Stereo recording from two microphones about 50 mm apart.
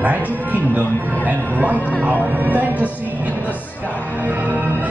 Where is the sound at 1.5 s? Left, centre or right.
Right.